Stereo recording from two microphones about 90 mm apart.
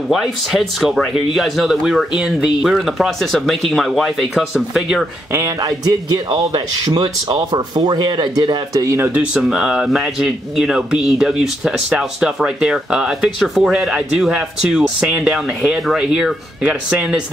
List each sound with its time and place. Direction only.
0.1 s speech: centre (ahead or behind)
5.3 s speech: 40° right (ahead or behind); by 8.5 s 55° right (ahead or behind)
8.7 s speech: 30° right (ahead or behind)
9.1 s speech: 10° right (ahead or behind)